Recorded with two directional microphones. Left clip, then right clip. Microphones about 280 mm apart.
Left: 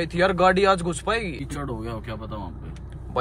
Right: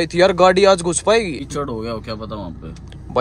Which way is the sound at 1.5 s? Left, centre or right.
Right.